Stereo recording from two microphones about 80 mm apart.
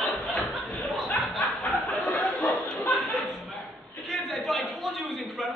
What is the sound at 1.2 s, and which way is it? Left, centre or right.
Snicker, centre.